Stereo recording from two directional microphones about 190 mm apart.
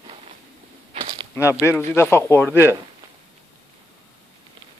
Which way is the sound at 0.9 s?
30° right (ahead or behind).